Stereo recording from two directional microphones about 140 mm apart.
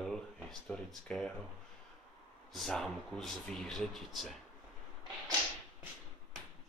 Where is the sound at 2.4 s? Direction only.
Centre (ahead or behind).